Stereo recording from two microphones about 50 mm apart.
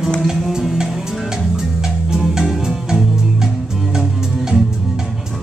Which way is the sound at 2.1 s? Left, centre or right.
Centre.